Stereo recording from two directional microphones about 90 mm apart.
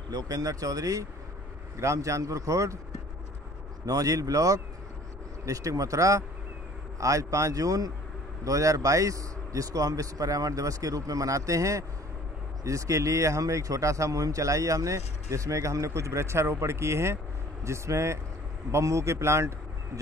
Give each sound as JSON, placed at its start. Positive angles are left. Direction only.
{"t": 0.1, "sound": "a man's voice", "side_deg": -40}
{"t": 3.8, "sound": "a man's voice", "side_deg": -40}